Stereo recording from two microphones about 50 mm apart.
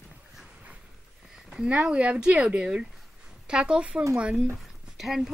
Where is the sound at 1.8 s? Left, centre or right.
Right.